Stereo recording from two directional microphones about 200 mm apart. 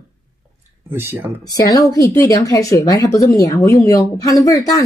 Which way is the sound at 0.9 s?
10° right (ahead or behind).